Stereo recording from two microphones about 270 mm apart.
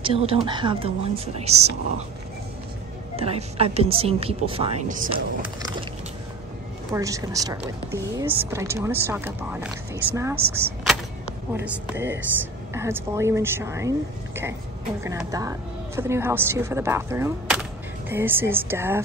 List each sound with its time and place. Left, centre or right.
0.0 s speech: centre
3.2 s speech: right
6.9 s speech: centre